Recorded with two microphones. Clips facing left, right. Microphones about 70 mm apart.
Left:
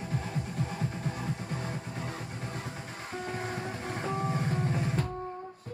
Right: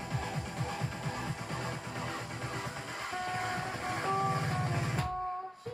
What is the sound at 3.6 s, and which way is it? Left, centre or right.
Music, centre.